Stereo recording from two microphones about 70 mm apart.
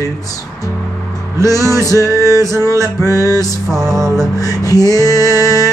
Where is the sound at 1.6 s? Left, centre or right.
Right.